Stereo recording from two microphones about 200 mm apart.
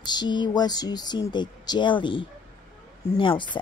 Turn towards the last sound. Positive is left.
turn(degrees=25)  # may be behind; listen again after turning